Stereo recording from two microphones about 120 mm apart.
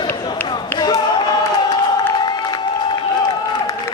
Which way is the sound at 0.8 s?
35° left (ahead or behind).